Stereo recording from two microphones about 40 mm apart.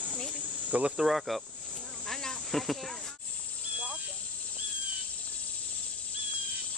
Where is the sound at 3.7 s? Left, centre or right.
Right.